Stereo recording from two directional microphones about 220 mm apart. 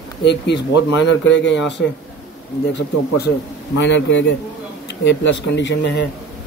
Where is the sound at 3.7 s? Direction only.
55° left (ahead or behind).